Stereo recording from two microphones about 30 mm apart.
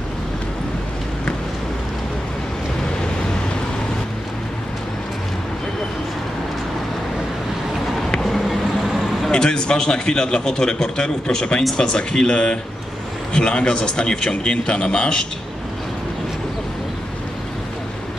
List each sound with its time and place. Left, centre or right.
8.2 s vehicle: centre
9.3 s a man's voice: left